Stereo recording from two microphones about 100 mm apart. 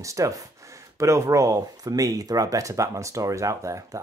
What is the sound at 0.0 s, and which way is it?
Speech, 30° right (ahead or behind).